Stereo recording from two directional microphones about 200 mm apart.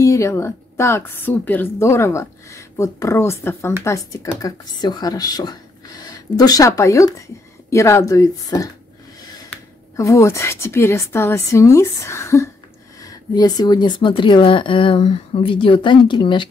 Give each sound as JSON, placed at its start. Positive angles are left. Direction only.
{"t": 0.0, "sound": "a woman's voice", "side_deg": 15}
{"t": 9.9, "sound": "a woman's voice", "side_deg": 15}